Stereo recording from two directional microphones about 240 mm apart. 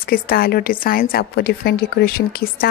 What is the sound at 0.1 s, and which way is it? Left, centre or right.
A woman's voice, left.